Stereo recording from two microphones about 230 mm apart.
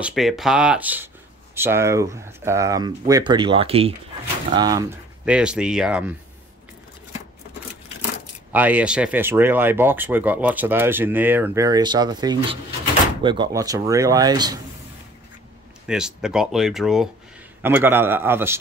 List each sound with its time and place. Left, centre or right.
0.0 s speech: centre
8.5 s speech: centre
15.9 s speech: centre